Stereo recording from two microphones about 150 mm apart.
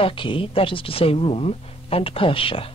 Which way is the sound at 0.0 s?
35° left (ahead or behind).